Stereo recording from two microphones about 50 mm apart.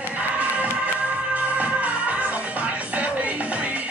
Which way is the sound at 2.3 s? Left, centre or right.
Right.